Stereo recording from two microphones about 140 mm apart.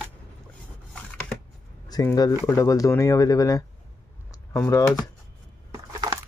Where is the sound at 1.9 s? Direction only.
30° left (ahead or behind).